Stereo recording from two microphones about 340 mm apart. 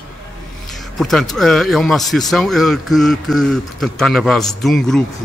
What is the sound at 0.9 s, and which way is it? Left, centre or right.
Speech, centre.